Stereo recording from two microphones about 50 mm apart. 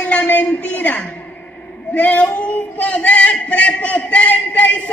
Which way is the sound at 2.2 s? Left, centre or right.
Left.